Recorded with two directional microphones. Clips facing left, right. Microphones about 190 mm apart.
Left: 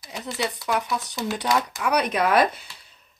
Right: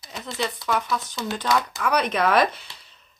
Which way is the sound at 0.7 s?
20° left (ahead or behind).